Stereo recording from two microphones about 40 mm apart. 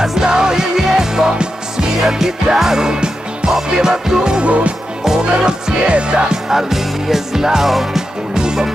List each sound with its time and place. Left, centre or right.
0.0 s music: centre
4.5 s music: right
5.0 s music: centre
6.5 s music: centre